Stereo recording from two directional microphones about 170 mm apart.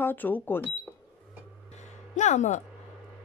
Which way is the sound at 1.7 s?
45° left (ahead or behind).